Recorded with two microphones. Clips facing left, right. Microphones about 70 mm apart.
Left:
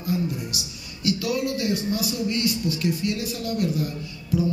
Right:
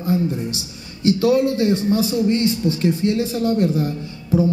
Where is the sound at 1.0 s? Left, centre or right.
Right.